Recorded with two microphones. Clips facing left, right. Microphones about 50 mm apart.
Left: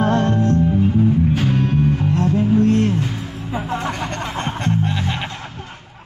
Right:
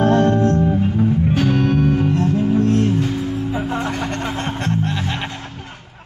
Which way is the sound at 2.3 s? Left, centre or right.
Left.